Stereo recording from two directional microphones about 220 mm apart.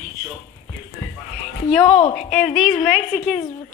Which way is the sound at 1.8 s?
25° left (ahead or behind).